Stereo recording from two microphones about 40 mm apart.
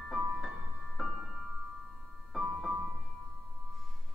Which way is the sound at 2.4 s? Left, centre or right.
Centre.